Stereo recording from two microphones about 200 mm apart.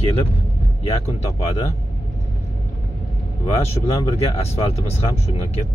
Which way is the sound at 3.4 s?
30° left (ahead or behind).